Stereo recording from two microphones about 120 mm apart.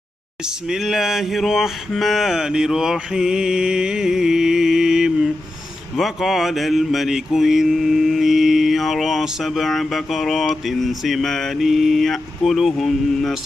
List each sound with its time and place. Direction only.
0.7 s mantra: 5° right (ahead or behind)